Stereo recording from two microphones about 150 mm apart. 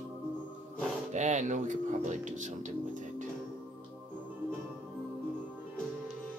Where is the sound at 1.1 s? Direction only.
55° right (ahead or behind).